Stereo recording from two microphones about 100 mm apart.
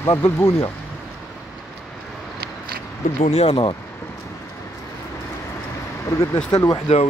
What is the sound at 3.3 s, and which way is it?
Speech, 80° left.